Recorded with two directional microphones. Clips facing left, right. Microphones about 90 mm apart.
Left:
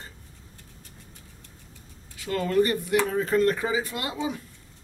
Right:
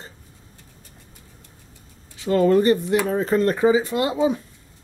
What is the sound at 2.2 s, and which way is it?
Speech, 25° right (ahead or behind).